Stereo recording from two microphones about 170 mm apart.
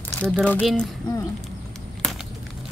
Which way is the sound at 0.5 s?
5° left (ahead or behind).